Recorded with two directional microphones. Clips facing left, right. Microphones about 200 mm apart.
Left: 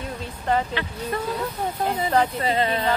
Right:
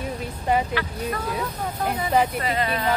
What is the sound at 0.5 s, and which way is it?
Speech, 15° right (ahead or behind).